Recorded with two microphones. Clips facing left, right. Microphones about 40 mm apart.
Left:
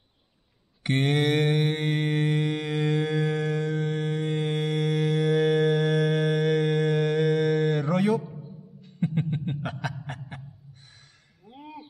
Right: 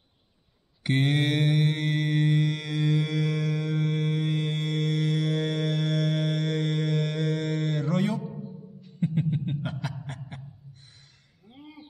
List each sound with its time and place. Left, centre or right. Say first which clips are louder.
0.8 s mantra: left 1 dB; centre
8.8 s a sound: even; centre
9.6 s chuckle: left 1 dB; centre